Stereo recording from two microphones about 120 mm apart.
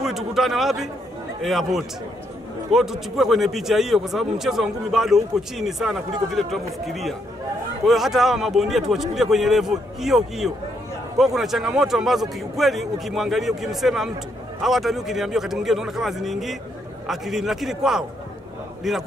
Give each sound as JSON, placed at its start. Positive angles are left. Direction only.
{"t": 0.0, "sound": "a man's voice", "side_deg": -5}